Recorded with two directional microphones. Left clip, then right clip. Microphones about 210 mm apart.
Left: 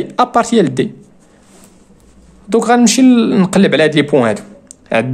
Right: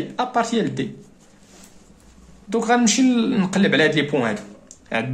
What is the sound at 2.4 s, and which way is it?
Speech, 50° left (ahead or behind).